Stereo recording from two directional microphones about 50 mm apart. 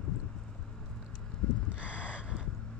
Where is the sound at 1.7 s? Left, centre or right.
Right.